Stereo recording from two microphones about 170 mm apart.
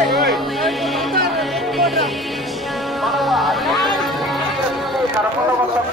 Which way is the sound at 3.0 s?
Centre (ahead or behind).